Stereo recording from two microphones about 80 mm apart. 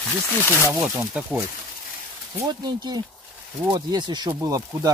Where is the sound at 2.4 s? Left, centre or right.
Right.